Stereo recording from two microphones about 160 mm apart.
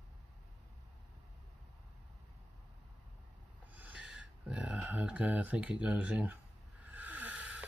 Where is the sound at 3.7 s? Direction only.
10° right (ahead or behind).